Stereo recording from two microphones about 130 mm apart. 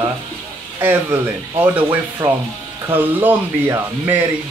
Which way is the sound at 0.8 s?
15° right (ahead or behind).